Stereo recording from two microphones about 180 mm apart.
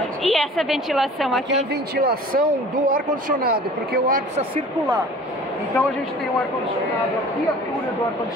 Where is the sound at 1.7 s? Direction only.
60° right (ahead or behind).